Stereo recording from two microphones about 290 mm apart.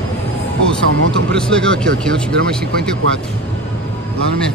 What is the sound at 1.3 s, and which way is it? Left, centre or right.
Speech, centre.